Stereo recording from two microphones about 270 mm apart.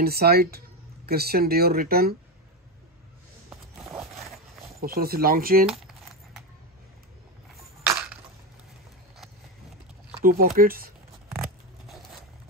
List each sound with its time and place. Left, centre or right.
0.0 s speech: right
3.4 s zipper: centre
4.8 s speech: right
5.7 s a sound: centre
10.2 s speech: right